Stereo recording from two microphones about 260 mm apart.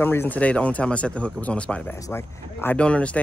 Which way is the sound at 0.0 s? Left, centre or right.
Centre.